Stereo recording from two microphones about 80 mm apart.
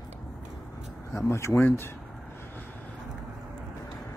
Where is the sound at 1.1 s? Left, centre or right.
Left.